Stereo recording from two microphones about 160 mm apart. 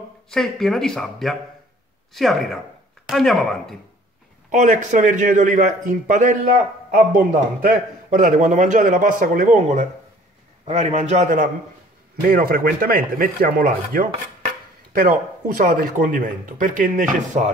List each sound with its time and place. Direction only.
0.3 s speech: centre (ahead or behind)
4.5 s speech: 50° right (ahead or behind)
12.2 s speech: 65° right (ahead or behind)